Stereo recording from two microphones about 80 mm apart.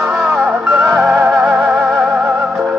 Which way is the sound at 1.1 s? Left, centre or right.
Right.